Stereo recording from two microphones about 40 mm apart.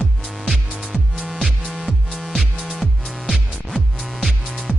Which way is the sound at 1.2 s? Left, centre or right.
Centre.